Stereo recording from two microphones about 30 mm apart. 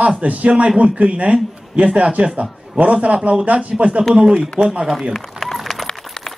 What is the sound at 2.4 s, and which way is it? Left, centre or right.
A man's voice, right.